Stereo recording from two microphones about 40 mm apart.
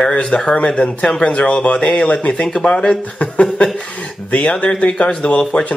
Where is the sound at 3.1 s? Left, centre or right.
Left.